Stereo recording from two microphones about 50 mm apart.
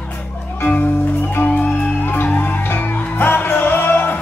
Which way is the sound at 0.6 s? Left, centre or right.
Left.